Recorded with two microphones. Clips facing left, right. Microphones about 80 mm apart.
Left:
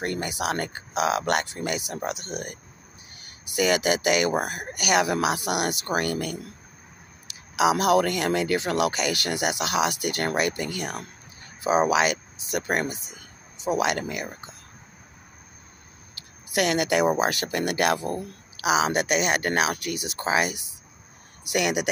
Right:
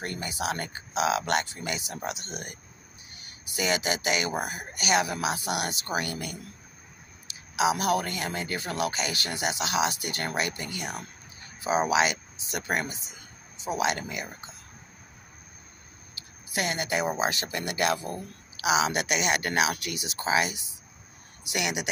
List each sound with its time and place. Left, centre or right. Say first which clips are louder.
0.0 s speech: left 4 dB; left
16.2 s a sound: left 6 dB; left
17.2 s speech: left 4 dB; left
18.1 s speech: left 6 dB; left